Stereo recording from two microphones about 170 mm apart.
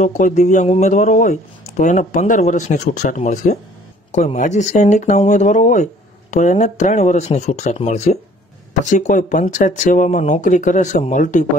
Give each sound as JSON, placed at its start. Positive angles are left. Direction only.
{"t": 0.2, "sound": "speech", "side_deg": 45}